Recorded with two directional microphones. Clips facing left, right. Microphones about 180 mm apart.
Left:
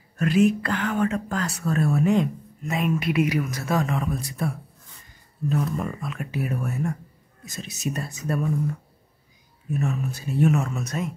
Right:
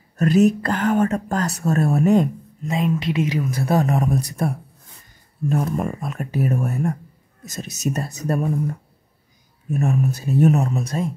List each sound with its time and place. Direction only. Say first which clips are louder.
0.2 s speech: right 4 dB; 40° right (ahead or behind)
2.7 s speech: right 2 dB; 25° right (ahead or behind)